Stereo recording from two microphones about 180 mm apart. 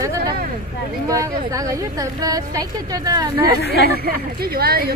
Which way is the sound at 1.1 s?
20° right (ahead or behind).